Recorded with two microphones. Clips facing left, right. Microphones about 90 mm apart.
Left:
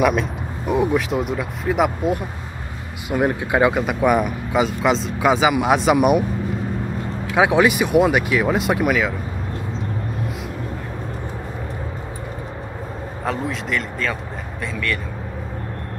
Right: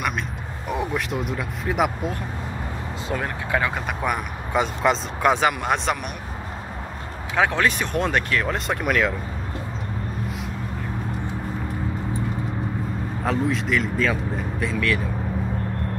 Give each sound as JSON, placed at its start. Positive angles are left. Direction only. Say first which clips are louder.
{"t": 0.0, "sound": "speech", "louder": "left 9 dB", "side_deg": 0}
{"t": 3.1, "sound": "speech", "louder": "left 6 dB", "side_deg": 20}
{"t": 3.7, "sound": "speech", "louder": "left 8 dB", "side_deg": 5}
{"t": 7.3, "sound": "speech", "louder": "left 5 dB", "side_deg": 10}
{"t": 13.2, "sound": "speech", "louder": "right 1 dB", "side_deg": 0}